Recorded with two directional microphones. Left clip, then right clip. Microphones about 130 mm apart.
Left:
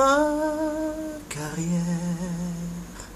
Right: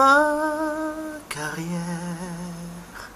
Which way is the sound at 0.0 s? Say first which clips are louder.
Right 3 dB; 10° left (ahead or behind).